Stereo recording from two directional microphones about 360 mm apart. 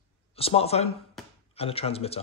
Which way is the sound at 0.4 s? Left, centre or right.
Centre.